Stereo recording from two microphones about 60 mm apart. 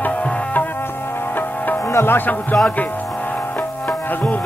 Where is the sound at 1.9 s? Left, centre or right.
Left.